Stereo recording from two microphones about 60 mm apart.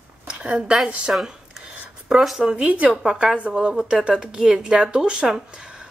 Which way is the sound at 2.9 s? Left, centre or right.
Centre.